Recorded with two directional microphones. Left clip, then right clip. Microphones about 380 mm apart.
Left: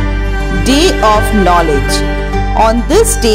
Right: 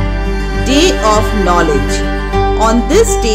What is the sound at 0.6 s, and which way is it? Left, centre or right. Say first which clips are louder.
Speech: left 1 dB; centre.